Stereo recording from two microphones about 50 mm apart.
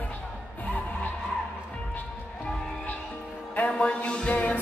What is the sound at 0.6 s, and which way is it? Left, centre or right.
Music, left.